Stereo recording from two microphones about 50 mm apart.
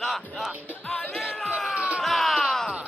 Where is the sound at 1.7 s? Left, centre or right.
Right.